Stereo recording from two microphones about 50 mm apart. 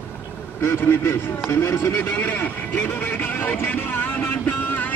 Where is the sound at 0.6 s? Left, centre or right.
Left.